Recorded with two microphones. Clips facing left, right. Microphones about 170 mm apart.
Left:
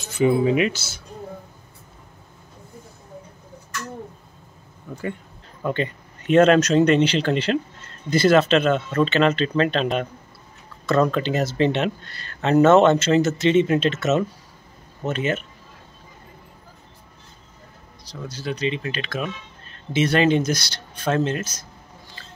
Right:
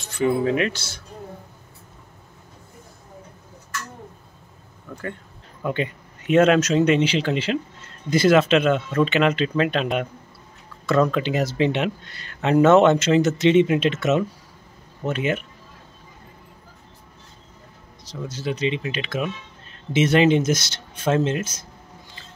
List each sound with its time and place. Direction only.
0.2 s speech: 10° left (ahead or behind)
4.9 s speech: 15° left (ahead or behind)
5.6 s speech: 10° right (ahead or behind)
18.0 s speech: 25° right (ahead or behind)